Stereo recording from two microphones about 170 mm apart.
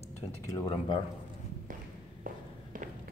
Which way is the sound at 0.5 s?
25° left (ahead or behind).